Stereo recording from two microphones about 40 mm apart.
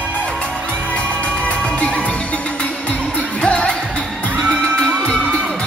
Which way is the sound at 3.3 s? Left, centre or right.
Left.